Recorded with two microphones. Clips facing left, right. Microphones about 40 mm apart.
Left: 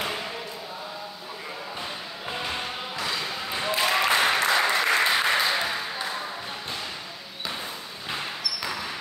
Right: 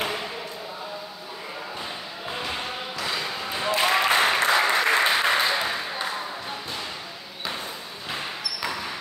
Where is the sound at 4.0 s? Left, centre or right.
Centre.